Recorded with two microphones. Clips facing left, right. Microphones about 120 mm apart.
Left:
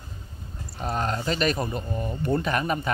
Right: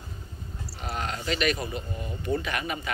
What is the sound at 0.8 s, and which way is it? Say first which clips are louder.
Speech: left 6 dB; 40° left (ahead or behind).